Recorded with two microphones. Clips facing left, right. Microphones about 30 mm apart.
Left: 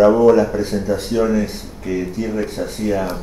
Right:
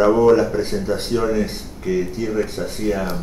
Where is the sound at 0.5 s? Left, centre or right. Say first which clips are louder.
Left 2 dB; right.